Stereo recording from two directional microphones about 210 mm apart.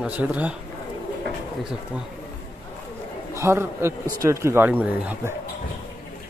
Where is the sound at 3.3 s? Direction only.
10° right (ahead or behind).